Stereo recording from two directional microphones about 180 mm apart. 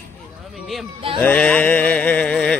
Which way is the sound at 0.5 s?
Centre (ahead or behind).